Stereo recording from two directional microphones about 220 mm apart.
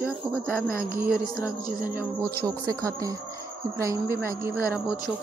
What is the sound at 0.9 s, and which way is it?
Speech, 10° right (ahead or behind).